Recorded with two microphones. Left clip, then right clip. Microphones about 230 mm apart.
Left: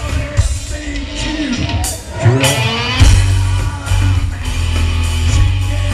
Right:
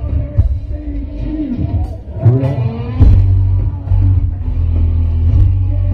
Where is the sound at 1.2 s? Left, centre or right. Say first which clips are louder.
Left 2 dB; left.